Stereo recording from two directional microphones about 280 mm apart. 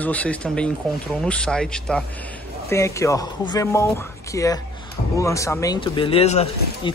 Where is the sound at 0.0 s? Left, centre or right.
Centre.